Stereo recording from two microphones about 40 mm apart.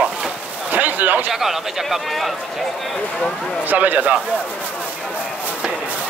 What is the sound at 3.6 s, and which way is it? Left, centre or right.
Speech, right.